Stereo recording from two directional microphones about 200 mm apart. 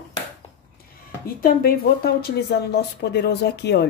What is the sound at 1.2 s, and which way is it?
Speech, 50° left (ahead or behind).